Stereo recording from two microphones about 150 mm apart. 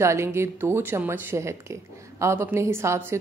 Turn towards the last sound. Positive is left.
turn(degrees=-15)  # may be behind; listen again after turning